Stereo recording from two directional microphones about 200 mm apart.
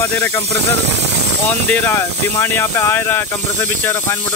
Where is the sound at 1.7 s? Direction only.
10° left (ahead or behind).